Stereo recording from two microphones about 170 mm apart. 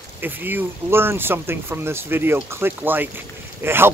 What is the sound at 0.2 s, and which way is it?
Speech, 10° right (ahead or behind).